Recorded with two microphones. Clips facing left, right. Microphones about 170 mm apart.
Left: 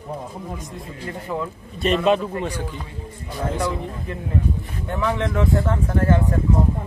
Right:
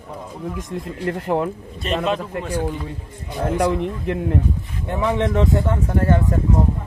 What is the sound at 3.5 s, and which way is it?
Speech, 70° right (ahead or behind).